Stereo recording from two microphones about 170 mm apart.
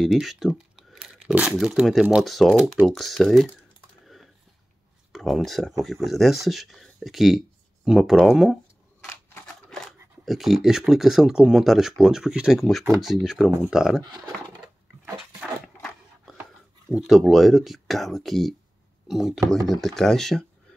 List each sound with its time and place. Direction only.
0.0 s speech: centre (ahead or behind)
4.0 s typing: centre (ahead or behind)
5.1 s speech: centre (ahead or behind)
9.0 s a sound: 15° left (ahead or behind)
10.2 s speech: centre (ahead or behind)
15.1 s dog: centre (ahead or behind)
16.9 s speech: centre (ahead or behind)